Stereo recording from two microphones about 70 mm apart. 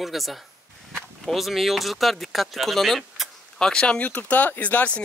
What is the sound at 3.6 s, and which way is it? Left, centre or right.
Speech, centre.